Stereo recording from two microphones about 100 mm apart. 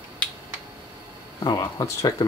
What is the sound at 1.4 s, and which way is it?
Speech, 35° left (ahead or behind).